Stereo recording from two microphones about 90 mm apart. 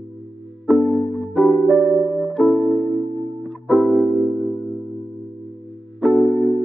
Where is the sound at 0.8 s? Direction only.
10° left (ahead or behind).